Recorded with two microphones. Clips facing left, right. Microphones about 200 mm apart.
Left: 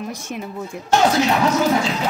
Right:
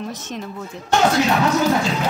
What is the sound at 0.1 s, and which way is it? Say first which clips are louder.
Speech: left 1 dB; 10° left (ahead or behind).